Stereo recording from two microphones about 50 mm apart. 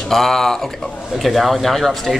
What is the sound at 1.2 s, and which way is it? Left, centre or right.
Speech, centre.